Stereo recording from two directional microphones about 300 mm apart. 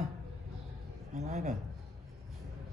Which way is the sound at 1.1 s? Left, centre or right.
Right.